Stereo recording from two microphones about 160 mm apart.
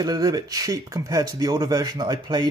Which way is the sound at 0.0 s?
25° right (ahead or behind).